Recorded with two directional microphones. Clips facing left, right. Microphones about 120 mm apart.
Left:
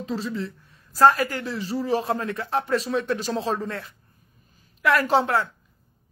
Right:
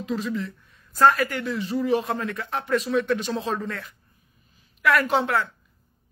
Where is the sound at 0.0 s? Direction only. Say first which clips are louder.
Right 1 dB; 30° left (ahead or behind).